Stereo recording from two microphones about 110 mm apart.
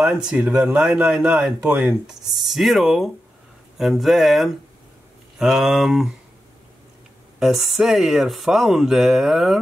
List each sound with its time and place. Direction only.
0.0 s speech: 5° right (ahead or behind)
7.3 s speech: 5° right (ahead or behind)